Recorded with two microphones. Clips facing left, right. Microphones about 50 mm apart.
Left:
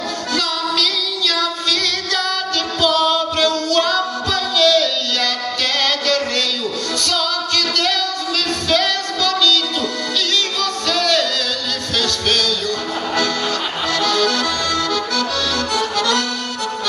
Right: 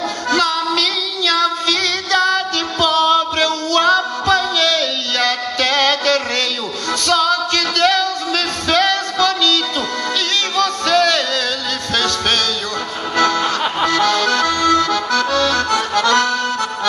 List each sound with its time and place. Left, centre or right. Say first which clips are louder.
0.3 s female singing: right 5 dB; right
7.0 s music: right 7 dB; right
10.6 s music: right 5 dB; right
13.8 s accordion: right 2 dB; right